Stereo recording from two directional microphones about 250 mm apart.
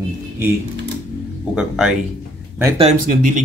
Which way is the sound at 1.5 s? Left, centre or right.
Centre.